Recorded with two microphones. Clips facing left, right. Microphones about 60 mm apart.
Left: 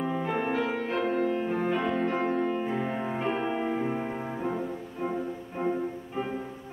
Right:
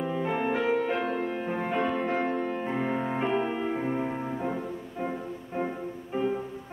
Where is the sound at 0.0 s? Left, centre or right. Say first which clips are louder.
Right 1 dB; centre.